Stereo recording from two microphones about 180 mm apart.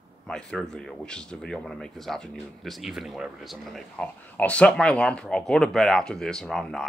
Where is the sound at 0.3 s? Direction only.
5° left (ahead or behind).